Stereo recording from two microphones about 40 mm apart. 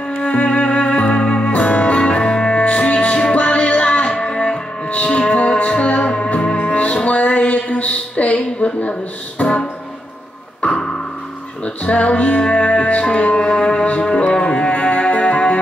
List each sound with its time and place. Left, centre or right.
0.2 s music: left
10.6 s music: left